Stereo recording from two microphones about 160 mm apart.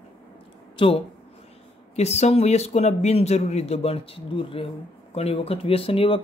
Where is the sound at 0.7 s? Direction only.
35° left (ahead or behind).